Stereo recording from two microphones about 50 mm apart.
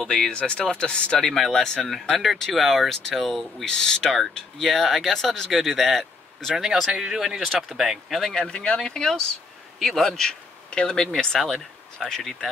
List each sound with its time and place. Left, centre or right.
0.0 s speech: centre
0.3 s speech: left
1.2 s speech: centre
3.6 s speech: centre
8.5 s speech: centre
9.8 s a man's voice: centre
10.0 s speech: centre